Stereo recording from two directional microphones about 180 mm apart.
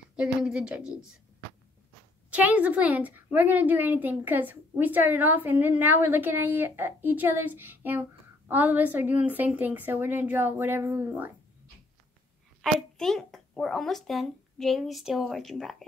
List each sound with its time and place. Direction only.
0.1 s a child's voice: 5° right (ahead or behind)
2.3 s a woman's voice: 10° right (ahead or behind)
12.6 s a child's voice: centre (ahead or behind)